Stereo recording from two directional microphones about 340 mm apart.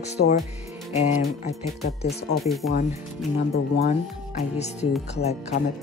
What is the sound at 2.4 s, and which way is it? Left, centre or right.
Speech, centre.